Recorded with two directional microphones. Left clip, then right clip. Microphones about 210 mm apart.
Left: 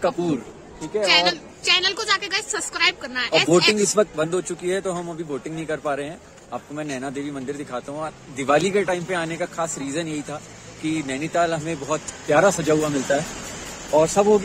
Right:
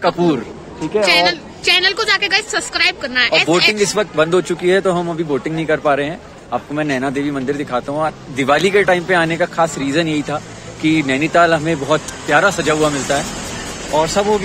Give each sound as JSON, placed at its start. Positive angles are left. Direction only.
{"t": 0.0, "sound": "speech", "side_deg": 0}
{"t": 1.0, "sound": "a woman's voice", "side_deg": 25}
{"t": 3.7, "sound": "speech", "side_deg": 0}
{"t": 14.0, "sound": "speech", "side_deg": 10}